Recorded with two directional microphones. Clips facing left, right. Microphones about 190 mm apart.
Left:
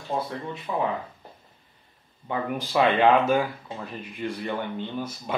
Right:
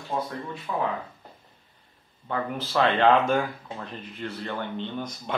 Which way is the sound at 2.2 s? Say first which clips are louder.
Left 1 dB; 15° left (ahead or behind).